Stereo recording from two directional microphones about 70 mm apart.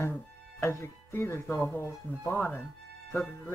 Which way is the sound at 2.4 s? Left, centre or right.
Left.